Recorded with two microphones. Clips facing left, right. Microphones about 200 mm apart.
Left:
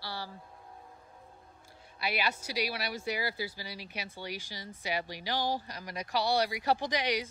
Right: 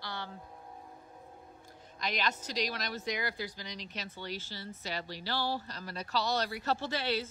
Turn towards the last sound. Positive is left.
turn(degrees=15)  # may be behind; listen again after turning